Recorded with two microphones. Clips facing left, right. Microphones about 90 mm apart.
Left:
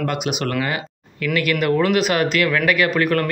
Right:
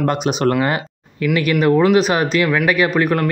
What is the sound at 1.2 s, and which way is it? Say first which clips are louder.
Speech: right 4 dB; 20° right (ahead or behind).